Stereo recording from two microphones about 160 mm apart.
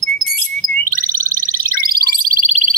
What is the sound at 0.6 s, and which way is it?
Bird, 60° right (ahead or behind).